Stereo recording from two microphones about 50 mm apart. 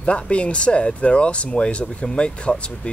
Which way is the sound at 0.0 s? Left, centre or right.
Left.